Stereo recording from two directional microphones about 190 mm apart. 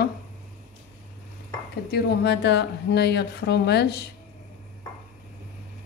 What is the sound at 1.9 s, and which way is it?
Speech, 60° left (ahead or behind).